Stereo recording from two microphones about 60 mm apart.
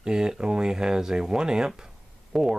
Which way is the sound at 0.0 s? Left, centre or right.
Centre.